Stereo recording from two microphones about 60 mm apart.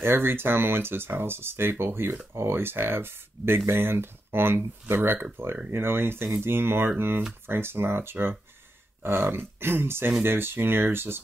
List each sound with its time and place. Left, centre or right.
0.0 s speech: right